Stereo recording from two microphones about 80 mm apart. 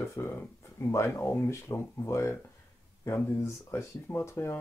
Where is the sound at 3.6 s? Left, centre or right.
Left.